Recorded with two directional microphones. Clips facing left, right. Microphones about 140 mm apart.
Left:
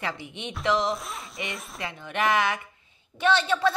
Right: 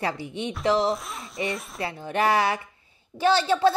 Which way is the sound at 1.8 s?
35° right (ahead or behind).